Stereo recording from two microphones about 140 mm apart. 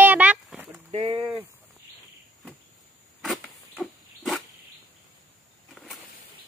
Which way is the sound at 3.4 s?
10° left (ahead or behind).